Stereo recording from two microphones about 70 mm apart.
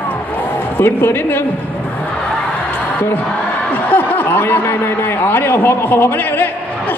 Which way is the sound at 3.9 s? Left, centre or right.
Left.